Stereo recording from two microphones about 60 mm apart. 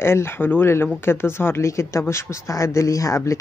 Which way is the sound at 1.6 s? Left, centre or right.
Left.